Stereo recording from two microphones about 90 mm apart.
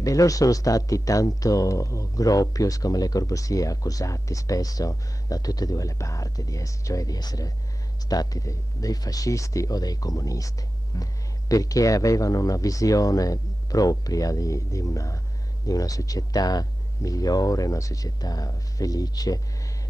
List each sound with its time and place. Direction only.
0.0 s speech: 40° left (ahead or behind)